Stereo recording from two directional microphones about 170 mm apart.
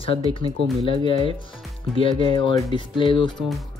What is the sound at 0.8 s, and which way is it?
Speech, 30° left (ahead or behind).